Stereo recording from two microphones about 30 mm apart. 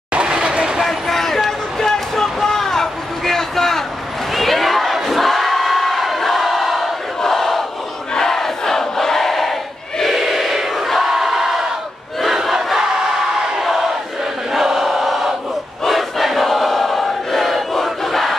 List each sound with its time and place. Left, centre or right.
0.2 s a sound: right
0.8 s a sound: centre
4.3 s crowd: centre
8.1 s battle cry: centre
10.2 s crowd: centre
13.6 s battle cry: centre
14.5 s chant: centre
15.9 s crowd: centre